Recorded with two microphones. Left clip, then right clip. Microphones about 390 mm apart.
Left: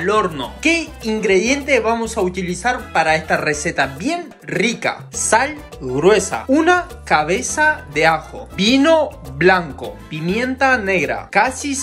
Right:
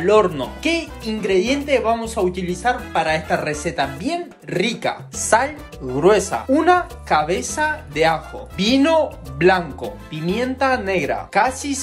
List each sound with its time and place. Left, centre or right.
0.0 s speech: centre